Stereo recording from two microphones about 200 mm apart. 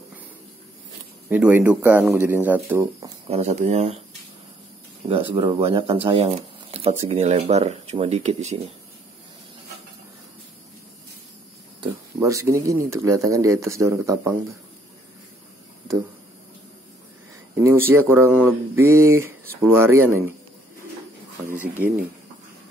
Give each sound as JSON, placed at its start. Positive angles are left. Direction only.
{"t": 1.3, "sound": "speech", "side_deg": -10}
{"t": 3.3, "sound": "speech", "side_deg": -35}
{"t": 5.0, "sound": "speech", "side_deg": -25}
{"t": 11.8, "sound": "speech", "side_deg": -15}
{"t": 17.6, "sound": "speech", "side_deg": -10}
{"t": 21.5, "sound": "speech", "side_deg": -10}